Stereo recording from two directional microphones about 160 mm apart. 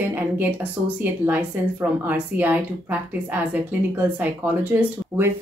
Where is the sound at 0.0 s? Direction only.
10° right (ahead or behind).